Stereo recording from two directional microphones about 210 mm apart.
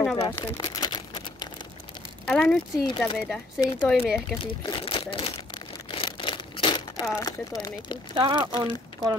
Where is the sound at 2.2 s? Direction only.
Centre (ahead or behind).